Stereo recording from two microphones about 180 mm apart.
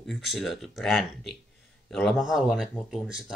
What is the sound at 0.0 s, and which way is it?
Speech, centre (ahead or behind).